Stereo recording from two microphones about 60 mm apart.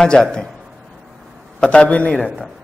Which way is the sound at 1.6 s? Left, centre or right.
Centre.